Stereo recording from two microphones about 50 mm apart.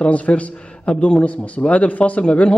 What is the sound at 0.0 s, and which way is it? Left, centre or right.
A man's voice, left.